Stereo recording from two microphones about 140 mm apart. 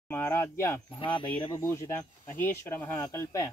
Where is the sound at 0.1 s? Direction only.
15° left (ahead or behind).